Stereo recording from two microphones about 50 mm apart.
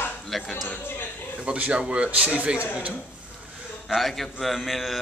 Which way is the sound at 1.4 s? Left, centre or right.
Right.